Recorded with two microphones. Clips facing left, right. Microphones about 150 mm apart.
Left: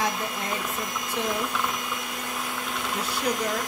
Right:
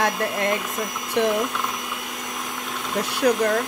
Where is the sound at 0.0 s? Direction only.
75° right (ahead or behind).